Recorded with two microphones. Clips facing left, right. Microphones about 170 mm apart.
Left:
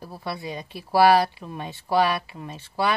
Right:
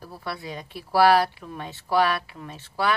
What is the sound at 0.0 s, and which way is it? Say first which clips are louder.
Speech: left 2 dB; 20° left (ahead or behind).